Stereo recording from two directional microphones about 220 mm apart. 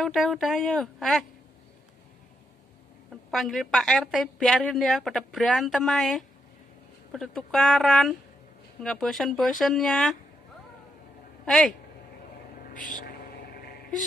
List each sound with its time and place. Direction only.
0.0 s a woman's voice: centre (ahead or behind)
3.1 s a woman's voice: centre (ahead or behind)
11.4 s a woman's voice: centre (ahead or behind)